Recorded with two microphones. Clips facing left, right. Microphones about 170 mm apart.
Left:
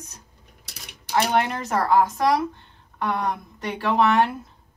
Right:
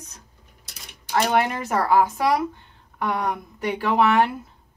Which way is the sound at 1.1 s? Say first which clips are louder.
Right 1 dB; 5° right (ahead or behind).